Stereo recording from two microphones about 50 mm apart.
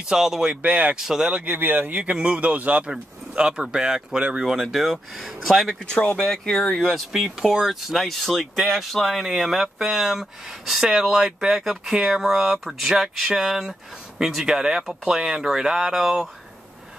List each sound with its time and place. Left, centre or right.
0.1 s speech: centre
0.6 s speech: right
0.9 s speech: centre
1.3 s speech: right
2.1 s speech: right
2.9 s speech: centre
5.9 s speech: centre